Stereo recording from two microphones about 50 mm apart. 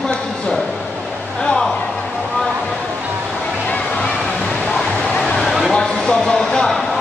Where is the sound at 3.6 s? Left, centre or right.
Left.